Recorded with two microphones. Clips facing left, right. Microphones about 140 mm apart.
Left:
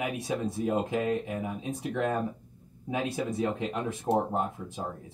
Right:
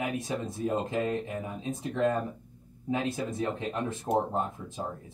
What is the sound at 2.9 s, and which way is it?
Speech, 15° left (ahead or behind).